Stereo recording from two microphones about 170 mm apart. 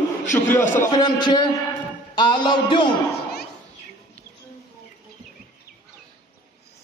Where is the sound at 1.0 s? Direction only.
25° left (ahead or behind).